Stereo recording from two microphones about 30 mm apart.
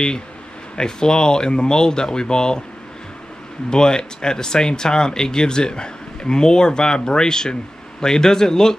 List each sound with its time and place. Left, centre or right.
0.7 s speech: left
3.7 s speech: left